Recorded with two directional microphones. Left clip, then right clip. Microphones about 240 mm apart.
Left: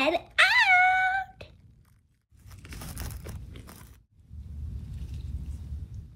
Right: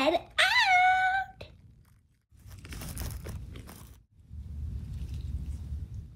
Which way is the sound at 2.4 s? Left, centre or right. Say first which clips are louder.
Even; centre.